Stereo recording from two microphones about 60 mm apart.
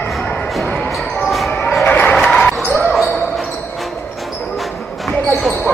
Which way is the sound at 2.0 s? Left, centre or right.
Centre.